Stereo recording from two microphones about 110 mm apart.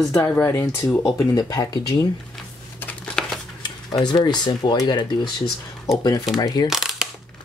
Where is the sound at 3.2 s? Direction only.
5° left (ahead or behind).